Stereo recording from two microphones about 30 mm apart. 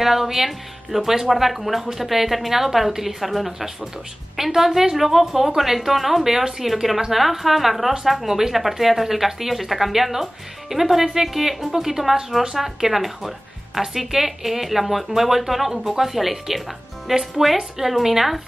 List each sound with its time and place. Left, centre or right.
0.0 s a woman's voice: centre
11.7 s a woman's voice: centre